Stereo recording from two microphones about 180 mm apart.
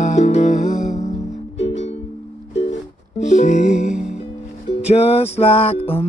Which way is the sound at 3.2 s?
40° left (ahead or behind).